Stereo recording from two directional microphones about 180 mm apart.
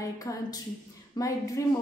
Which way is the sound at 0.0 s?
20° left (ahead or behind).